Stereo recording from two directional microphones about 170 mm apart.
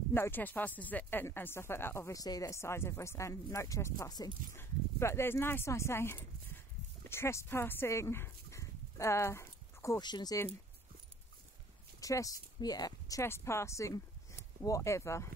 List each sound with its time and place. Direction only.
0.1 s speech: 10° left (ahead or behind)
12.0 s speech: 20° left (ahead or behind)